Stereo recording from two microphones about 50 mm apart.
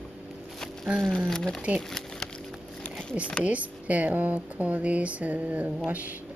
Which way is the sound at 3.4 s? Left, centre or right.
Right.